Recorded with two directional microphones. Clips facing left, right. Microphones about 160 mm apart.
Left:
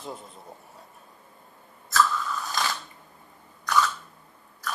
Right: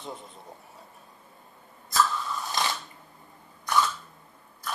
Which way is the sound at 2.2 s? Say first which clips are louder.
Even; 25° right (ahead or behind).